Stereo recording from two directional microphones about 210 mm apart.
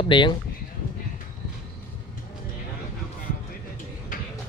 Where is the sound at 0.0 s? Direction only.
20° left (ahead or behind).